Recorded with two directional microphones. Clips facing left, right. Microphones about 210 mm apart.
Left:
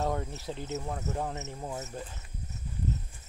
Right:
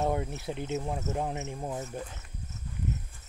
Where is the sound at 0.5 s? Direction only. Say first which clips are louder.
Right 3 dB; 15° right (ahead or behind).